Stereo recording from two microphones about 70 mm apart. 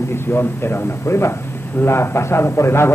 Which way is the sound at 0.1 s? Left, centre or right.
Left.